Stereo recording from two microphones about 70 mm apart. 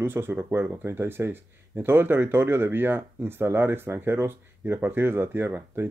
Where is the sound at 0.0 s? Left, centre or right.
Right.